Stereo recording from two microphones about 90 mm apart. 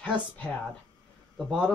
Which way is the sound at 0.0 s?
15° left (ahead or behind).